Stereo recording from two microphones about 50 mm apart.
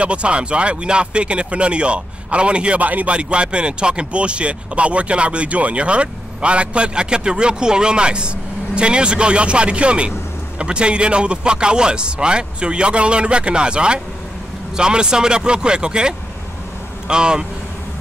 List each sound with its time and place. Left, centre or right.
0.0 s speech: right
3.2 s speech: right